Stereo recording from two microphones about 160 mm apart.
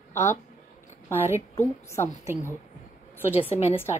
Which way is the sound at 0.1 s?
15° left (ahead or behind).